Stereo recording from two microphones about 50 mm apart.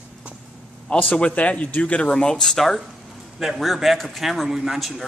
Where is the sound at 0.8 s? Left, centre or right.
Left.